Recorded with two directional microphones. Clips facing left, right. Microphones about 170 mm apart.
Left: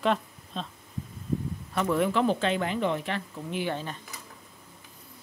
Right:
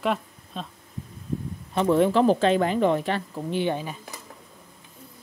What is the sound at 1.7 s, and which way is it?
Speech, 30° right (ahead or behind).